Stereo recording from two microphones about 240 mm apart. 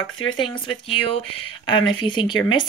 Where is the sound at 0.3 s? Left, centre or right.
Left.